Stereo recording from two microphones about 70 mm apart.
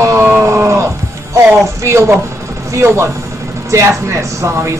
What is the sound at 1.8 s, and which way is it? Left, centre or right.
Sheep, right.